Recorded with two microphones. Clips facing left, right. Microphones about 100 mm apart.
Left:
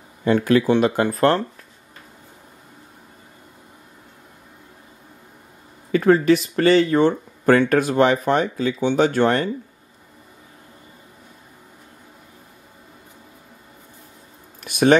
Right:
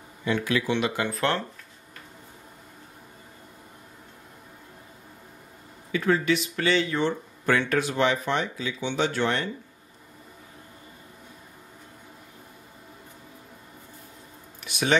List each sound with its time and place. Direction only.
0.2 s speech: 45° left (ahead or behind)
5.9 s speech: 45° left (ahead or behind)
14.6 s a sound: 50° left (ahead or behind)